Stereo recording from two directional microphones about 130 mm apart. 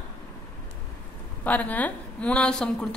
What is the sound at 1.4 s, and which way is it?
A woman's voice, 10° left (ahead or behind).